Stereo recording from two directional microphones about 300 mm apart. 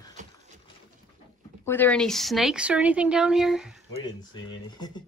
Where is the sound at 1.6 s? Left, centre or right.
Centre.